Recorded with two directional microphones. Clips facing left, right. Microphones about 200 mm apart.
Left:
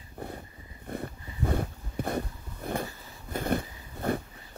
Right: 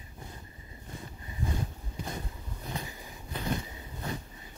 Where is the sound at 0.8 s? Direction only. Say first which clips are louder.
Left 9 dB; 60° left (ahead or behind).